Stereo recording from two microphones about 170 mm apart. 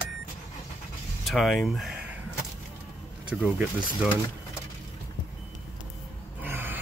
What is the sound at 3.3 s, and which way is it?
Speech, 5° right (ahead or behind).